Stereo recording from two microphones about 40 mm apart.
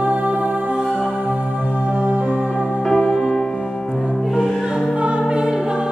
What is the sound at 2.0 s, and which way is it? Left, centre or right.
Music, right.